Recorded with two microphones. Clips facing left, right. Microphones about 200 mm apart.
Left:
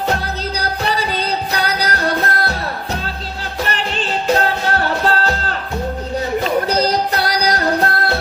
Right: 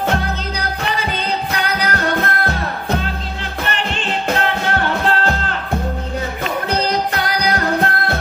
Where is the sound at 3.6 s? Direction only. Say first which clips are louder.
Even; 35° left (ahead or behind).